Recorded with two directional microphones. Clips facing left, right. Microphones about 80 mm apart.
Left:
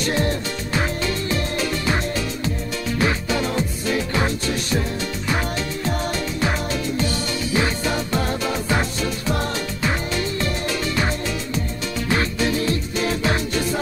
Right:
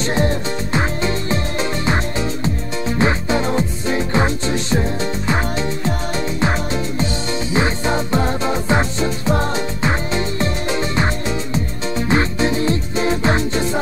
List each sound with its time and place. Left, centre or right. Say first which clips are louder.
0.0 s music: right 3 dB; right